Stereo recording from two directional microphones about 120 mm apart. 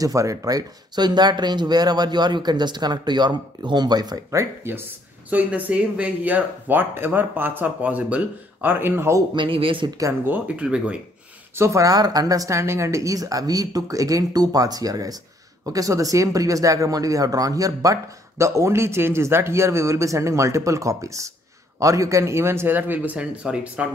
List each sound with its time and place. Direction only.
0.0 s speech: 30° right (ahead or behind)
5.3 s speech: 10° right (ahead or behind)
9.3 s speech: 45° right (ahead or behind)
9.9 s speech: 25° right (ahead or behind)
10.3 s speech: 10° right (ahead or behind)
11.5 s speech: 25° right (ahead or behind); by 23.9 s 10° right (ahead or behind)